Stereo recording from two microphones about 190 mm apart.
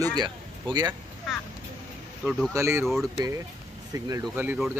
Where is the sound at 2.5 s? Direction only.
15° right (ahead or behind).